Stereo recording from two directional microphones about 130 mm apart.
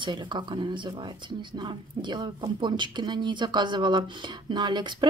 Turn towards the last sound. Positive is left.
turn(degrees=-35)  # may be behind; listen again after turning